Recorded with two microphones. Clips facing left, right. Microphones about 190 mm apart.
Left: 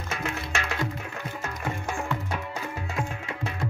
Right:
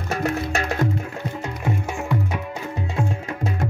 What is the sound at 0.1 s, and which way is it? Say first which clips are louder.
Music: right 9 dB; 40° right (ahead or behind).